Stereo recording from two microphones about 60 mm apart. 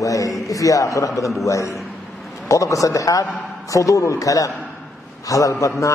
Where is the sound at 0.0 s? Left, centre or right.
Left.